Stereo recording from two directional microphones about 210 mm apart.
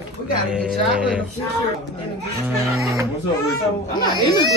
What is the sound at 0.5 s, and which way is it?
Speech, 5° right (ahead or behind).